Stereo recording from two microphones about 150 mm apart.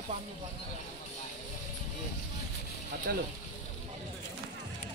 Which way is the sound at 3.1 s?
90° right.